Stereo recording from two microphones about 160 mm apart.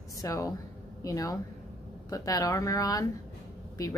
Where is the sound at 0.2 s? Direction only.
20° left (ahead or behind).